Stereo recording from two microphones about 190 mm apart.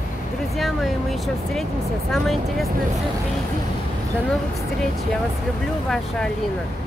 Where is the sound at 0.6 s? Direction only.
Centre (ahead or behind).